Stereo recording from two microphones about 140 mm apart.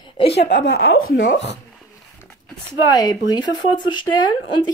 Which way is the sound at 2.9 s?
25° left (ahead or behind).